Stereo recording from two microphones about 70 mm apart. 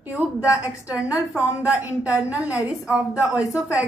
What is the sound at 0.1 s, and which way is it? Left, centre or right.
A woman's voice, centre.